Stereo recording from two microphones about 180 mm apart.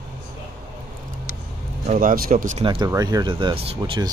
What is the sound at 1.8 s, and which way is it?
Speech, 45° right (ahead or behind).